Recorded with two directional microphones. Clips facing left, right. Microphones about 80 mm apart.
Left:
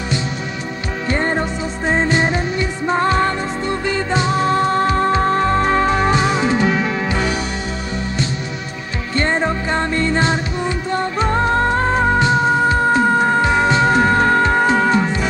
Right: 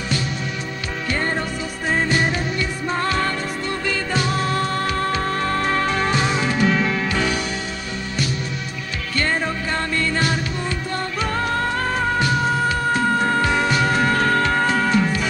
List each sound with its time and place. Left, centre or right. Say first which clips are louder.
1.0 s music: left 5 dB; left
9.1 s music: left 5 dB; left